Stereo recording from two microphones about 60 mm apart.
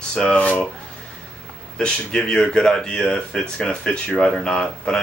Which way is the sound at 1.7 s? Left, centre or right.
Centre.